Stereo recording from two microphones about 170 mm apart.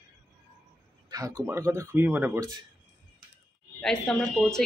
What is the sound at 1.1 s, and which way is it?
Speech, 20° right (ahead or behind).